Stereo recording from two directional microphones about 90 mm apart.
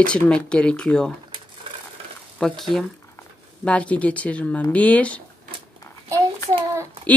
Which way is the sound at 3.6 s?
15° left (ahead or behind).